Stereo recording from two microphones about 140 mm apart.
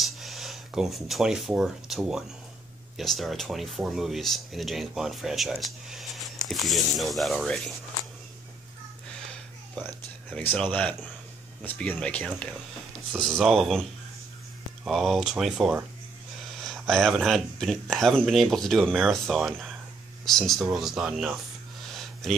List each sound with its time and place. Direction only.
0.0 s speech: centre (ahead or behind)
10.5 s speech: 10° left (ahead or behind)
14.9 s speech: centre (ahead or behind)